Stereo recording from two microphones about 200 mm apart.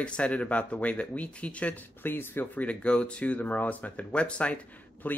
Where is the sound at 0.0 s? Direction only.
5° left (ahead or behind).